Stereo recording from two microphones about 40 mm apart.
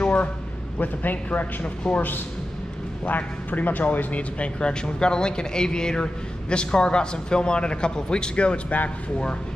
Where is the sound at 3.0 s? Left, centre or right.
Left.